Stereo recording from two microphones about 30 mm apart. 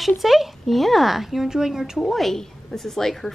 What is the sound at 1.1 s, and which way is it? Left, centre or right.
Speech, centre.